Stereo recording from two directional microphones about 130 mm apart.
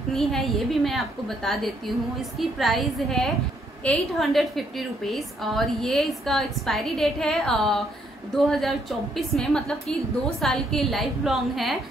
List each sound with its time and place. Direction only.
0.1 s a woman's voice: centre (ahead or behind)